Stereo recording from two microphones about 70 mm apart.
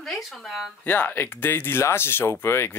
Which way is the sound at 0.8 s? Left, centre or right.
Left.